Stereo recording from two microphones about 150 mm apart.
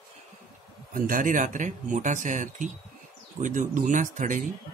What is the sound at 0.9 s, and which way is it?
Speech, 65° right (ahead or behind).